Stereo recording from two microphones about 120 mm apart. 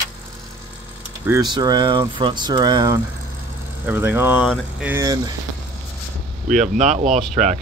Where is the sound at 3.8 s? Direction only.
15° right (ahead or behind).